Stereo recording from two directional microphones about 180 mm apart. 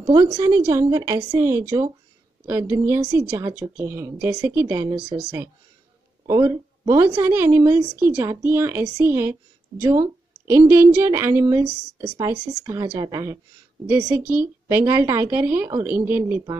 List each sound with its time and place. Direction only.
0.0 s a woman's voice: 20° right (ahead or behind)
6.2 s a woman's voice: 15° right (ahead or behind)
14.4 s speech: 10° right (ahead or behind)